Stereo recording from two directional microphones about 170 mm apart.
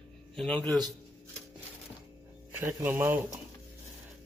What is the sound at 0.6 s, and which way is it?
Speech, 25° right (ahead or behind).